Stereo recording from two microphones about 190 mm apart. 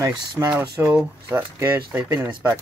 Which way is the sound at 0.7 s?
10° right (ahead or behind).